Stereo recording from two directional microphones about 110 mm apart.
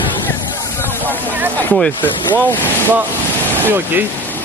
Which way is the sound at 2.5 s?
15° left (ahead or behind).